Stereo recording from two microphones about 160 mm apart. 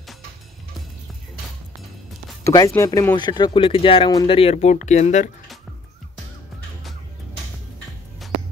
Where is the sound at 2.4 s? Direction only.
20° left (ahead or behind).